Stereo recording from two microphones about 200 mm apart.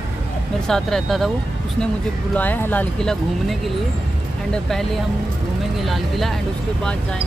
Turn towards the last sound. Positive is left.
turn(degrees=0)  # may be behind; listen again after turning